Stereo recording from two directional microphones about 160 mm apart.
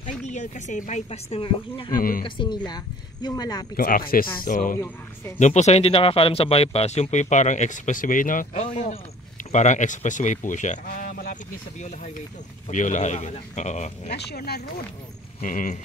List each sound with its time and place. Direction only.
0.0 s speech: 45° left (ahead or behind)
1.9 s speech: 60° left (ahead or behind)
2.2 s speech: 30° left (ahead or behind)
3.7 s speech: 65° left (ahead or behind)
4.7 s speech: 15° left (ahead or behind)
5.4 s speech: 45° left (ahead or behind)
12.6 s speech: 50° left (ahead or behind)
14.1 s speech: 75° left (ahead or behind)
15.4 s speech: 55° left (ahead or behind)